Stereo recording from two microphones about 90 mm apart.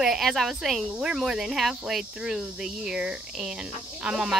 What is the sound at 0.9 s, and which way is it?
Cricket, 10° right (ahead or behind).